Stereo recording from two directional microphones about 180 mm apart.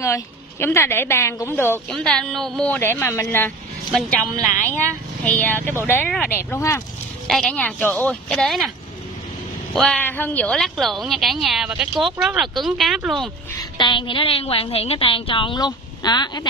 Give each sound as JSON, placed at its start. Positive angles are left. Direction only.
{"t": 0.0, "sound": "a woman's voice", "side_deg": 15}
{"t": 5.2, "sound": "a woman's voice", "side_deg": 10}
{"t": 7.2, "sound": "a woman's voice", "side_deg": 5}
{"t": 9.8, "sound": "a woman's voice", "side_deg": 5}
{"t": 13.7, "sound": "a woman's voice", "side_deg": 25}